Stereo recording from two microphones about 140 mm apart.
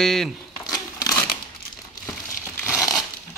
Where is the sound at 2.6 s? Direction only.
20° left (ahead or behind).